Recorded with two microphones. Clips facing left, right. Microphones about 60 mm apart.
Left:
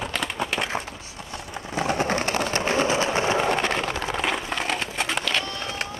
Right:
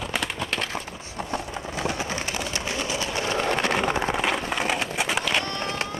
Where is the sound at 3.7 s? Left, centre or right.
Centre.